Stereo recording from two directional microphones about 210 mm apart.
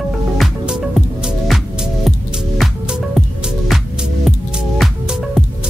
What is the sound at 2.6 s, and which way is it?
Music, centre (ahead or behind).